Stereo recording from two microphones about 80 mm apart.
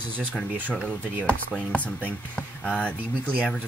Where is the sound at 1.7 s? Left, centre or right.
Centre.